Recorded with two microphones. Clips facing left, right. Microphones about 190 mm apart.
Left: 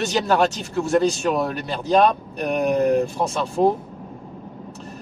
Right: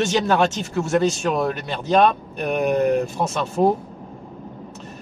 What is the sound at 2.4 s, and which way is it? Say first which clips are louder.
Speech: even; centre (ahead or behind).